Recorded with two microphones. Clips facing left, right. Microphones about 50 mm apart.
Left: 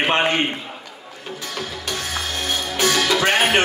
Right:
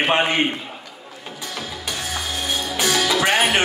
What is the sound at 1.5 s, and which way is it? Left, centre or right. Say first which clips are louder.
Music: left 1 dB; centre.